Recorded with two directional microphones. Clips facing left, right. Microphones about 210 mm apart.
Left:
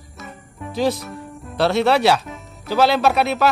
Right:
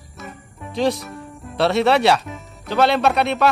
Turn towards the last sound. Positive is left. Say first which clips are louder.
# even
turn(degrees=5)  # may be behind; listen again after turning